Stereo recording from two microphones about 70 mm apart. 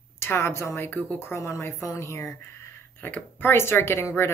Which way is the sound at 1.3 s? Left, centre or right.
Left.